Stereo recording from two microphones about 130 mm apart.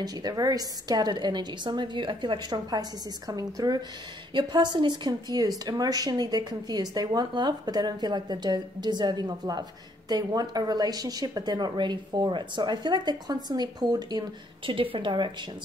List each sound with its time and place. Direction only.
0.0 s a woman's voice: 30° right (ahead or behind)
14.7 s a woman's voice: 40° right (ahead or behind)